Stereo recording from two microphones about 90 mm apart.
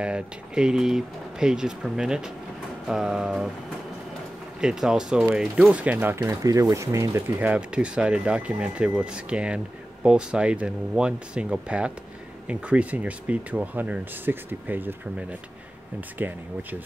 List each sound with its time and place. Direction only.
0.0 s speech: 10° right (ahead or behind)
2.9 s a sound: 5° right (ahead or behind)
4.6 s speech: 10° right (ahead or behind); by 7.3 s 35° right (ahead or behind)
7.3 s speech: 15° right (ahead or behind)